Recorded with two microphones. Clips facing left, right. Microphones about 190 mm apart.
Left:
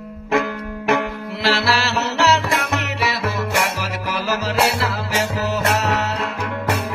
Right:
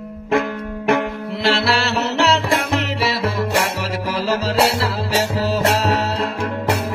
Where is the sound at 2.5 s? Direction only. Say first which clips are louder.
Right 3 dB; 30° right (ahead or behind).